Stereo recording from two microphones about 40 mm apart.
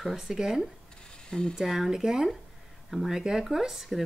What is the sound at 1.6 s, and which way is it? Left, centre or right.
Speech, centre.